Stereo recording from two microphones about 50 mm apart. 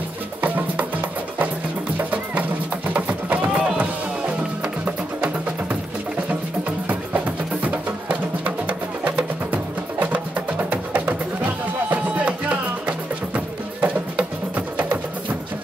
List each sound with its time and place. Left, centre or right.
0.4 s music: right
2.0 s music: right
7.6 s music: right
12.3 s music: right